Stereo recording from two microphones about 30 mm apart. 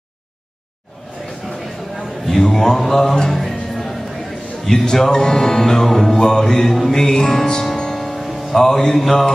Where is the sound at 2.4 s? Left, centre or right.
Centre.